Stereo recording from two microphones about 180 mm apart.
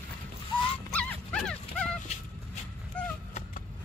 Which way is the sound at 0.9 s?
5° left (ahead or behind).